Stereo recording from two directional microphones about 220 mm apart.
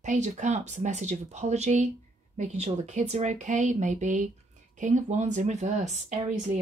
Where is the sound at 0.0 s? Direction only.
35° right (ahead or behind).